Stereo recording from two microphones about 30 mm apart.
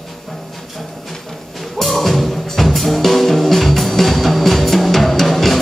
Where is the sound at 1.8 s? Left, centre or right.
Centre.